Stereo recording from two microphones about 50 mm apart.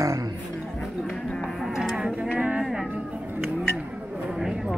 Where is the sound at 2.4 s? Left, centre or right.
Right.